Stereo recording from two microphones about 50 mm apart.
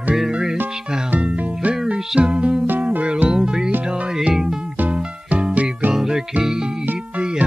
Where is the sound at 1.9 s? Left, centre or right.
Centre.